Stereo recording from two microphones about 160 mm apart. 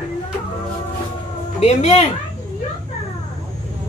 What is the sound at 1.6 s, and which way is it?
Speech, 45° left (ahead or behind).